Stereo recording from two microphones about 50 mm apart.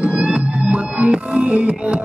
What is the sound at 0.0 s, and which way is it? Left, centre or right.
Music, right.